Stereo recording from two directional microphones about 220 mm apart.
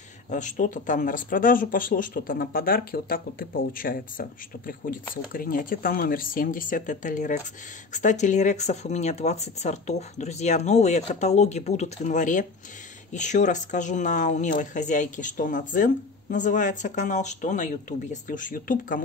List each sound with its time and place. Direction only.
0.3 s speech: 35° left (ahead or behind)